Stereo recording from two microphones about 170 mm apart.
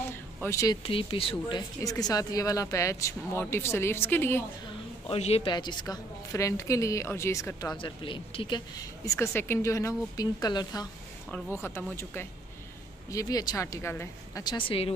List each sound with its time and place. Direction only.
0.4 s speech: 15° left (ahead or behind)
0.8 s speech: 35° left (ahead or behind)
1.8 s speech: 20° left (ahead or behind)
5.1 s a woman's voice: 35° left (ahead or behind); by 7.7 s 15° left (ahead or behind)
7.7 s a woman's voice: 30° left (ahead or behind)